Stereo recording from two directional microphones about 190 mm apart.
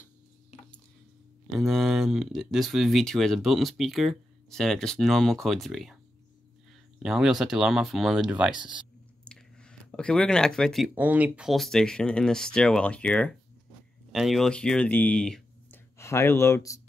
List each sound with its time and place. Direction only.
1.5 s speech: centre (ahead or behind)
7.0 s speech: 5° right (ahead or behind)
8.5 s speech: 25° right (ahead or behind)
9.2 s a sound: 5° left (ahead or behind)
11.0 s speech: 10° right (ahead or behind)
16.0 s speech: 15° left (ahead or behind)